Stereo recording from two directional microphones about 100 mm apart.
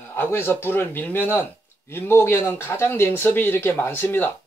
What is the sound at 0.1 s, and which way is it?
Speech, 25° left (ahead or behind).